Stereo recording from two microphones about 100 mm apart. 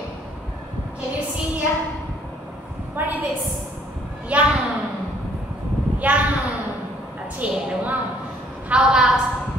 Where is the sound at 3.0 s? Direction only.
20° right (ahead or behind).